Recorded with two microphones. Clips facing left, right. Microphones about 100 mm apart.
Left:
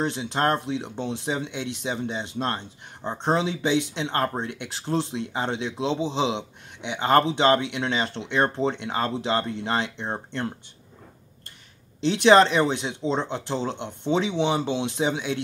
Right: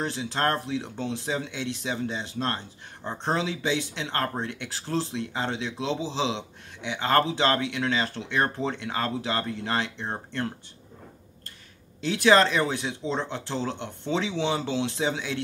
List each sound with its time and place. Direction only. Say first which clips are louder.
0.0 s speech: left 3 dB; 20° left (ahead or behind)
12.0 s speech: left 4 dB; 20° left (ahead or behind)